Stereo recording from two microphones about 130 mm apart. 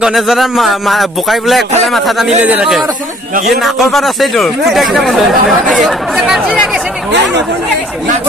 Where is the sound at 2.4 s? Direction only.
10° right (ahead or behind).